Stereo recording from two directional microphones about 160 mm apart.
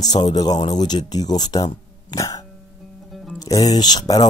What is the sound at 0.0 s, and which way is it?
Speech, 25° left (ahead or behind).